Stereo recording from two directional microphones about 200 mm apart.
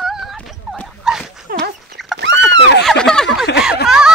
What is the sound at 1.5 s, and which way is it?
Fowl, 50° right (ahead or behind).